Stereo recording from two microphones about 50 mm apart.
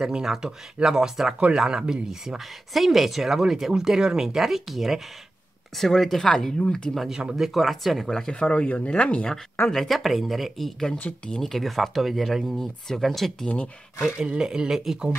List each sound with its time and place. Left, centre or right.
0.0 s speech: centre
7.1 s speech: centre
8.3 s speech: left
9.7 s speech: centre
11.2 s speech: centre
11.5 s speech: centre
12.5 s speech: centre
13.5 s speech: left
14.0 s speech: centre